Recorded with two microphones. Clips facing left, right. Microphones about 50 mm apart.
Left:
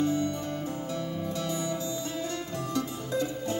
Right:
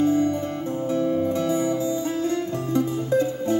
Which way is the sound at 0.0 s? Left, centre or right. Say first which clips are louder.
Right 7 dB; right.